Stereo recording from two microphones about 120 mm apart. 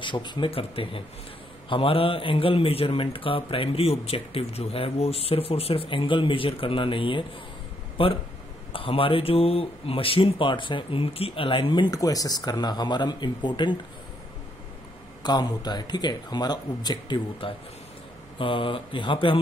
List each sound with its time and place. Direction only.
0.0 s speech: 40° left (ahead or behind)
15.2 s speech: 35° left (ahead or behind)